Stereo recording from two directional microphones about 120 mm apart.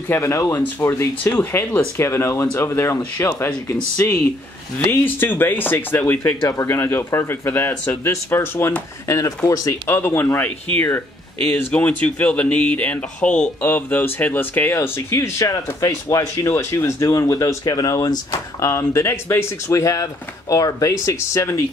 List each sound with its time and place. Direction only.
0.1 s speech: 25° left (ahead or behind)
11.7 s speech: 10° left (ahead or behind)